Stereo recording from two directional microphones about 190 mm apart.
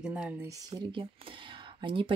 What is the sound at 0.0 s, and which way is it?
Speech, 5° right (ahead or behind).